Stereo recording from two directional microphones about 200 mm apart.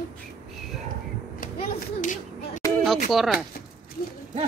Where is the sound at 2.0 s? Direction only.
40° left (ahead or behind).